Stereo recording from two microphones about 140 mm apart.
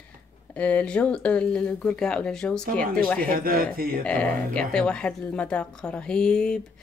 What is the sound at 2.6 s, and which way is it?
Speech, 90° right.